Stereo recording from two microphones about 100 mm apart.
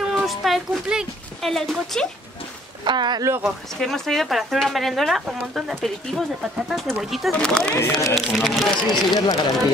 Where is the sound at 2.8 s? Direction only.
50° right (ahead or behind).